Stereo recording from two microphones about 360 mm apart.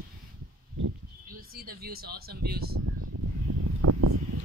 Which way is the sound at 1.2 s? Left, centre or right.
Right.